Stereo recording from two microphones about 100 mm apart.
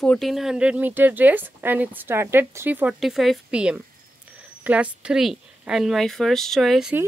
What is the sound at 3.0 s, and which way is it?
A woman's voice, centre (ahead or behind).